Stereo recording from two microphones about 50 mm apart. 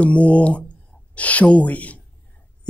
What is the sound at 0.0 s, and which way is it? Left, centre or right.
Speech, left.